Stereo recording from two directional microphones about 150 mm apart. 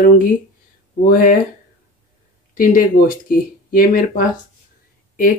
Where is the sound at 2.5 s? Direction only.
65° left (ahead or behind).